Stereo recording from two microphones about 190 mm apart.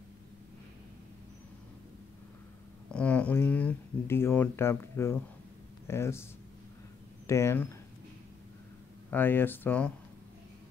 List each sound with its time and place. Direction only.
2.9 s speech: 5° left (ahead or behind)
7.2 s speech: 15° left (ahead or behind)
9.1 s speech: 10° left (ahead or behind)